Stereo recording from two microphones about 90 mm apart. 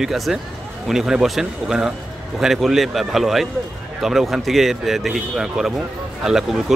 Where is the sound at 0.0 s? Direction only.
5° right (ahead or behind).